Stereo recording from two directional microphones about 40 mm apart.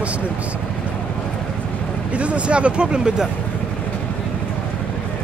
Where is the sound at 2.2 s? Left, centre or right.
Right.